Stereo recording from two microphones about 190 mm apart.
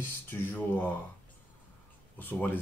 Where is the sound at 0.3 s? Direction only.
10° left (ahead or behind).